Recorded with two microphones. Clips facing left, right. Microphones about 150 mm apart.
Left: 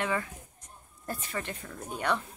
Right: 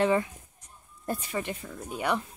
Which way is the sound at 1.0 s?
15° right (ahead or behind).